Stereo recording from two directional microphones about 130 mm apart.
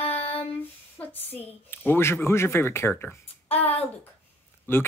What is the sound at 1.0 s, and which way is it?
A woman's voice, 15° left (ahead or behind).